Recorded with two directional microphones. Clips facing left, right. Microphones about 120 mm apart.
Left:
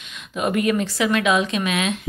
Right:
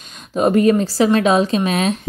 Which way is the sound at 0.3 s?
35° right (ahead or behind).